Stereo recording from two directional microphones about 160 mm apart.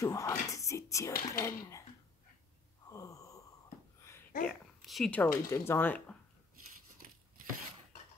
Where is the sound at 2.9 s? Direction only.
20° left (ahead or behind).